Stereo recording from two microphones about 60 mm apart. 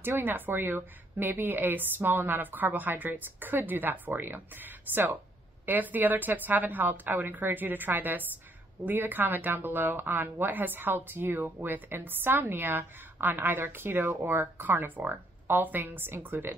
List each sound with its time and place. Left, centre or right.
0.0 s speech: right